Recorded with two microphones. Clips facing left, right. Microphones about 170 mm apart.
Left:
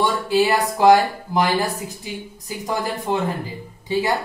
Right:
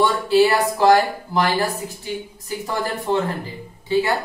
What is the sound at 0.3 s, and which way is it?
Speech, 15° left (ahead or behind).